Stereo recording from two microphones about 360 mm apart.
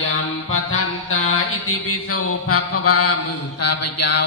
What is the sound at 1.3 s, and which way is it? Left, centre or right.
Mantra, left.